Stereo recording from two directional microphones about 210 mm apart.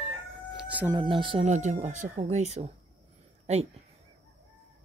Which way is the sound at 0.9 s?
25° right (ahead or behind).